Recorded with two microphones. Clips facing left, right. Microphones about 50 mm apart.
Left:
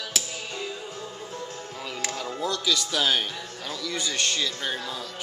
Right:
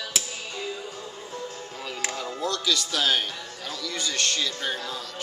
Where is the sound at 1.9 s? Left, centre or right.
Centre.